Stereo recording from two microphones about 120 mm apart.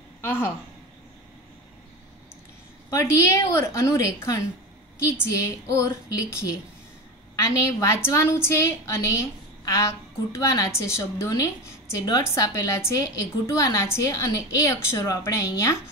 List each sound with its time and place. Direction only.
0.2 s speech: 20° left (ahead or behind)
2.9 s a woman's voice: 25° left (ahead or behind)